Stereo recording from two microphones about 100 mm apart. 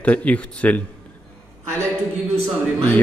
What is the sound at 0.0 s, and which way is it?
Speech, 15° left (ahead or behind).